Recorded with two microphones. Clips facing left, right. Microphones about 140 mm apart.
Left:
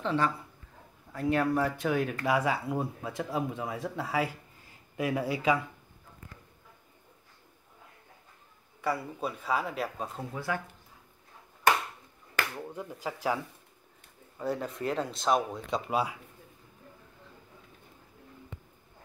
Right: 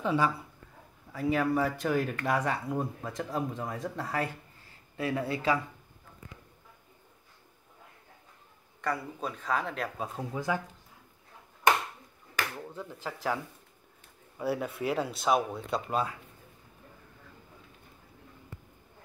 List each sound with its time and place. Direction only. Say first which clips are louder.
0.0 s speech: right 1 dB; 10° right (ahead or behind)
4.9 s speech: left 1 dB; 15° left (ahead or behind)
8.8 s speech: left 1 dB; 5° left (ahead or behind)
9.9 s speech: right 1 dB; 5° right (ahead or behind)
10.3 s speech: right 3 dB; 20° right (ahead or behind)
12.5 s speech: left 2 dB; 10° left (ahead or behind)
14.4 s speech: right 1 dB; 5° right (ahead or behind)